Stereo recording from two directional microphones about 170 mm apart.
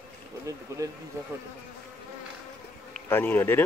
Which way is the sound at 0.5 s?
20° right (ahead or behind).